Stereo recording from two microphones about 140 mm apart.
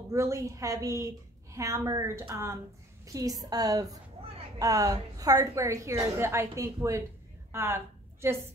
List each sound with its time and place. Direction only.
0.1 s a woman's voice: 20° right (ahead or behind)